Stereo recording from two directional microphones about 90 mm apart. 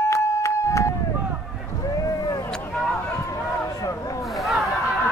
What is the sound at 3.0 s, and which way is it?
Run, 35° left (ahead or behind).